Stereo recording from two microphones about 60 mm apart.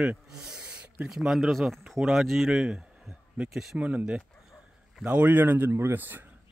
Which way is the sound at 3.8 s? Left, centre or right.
Right.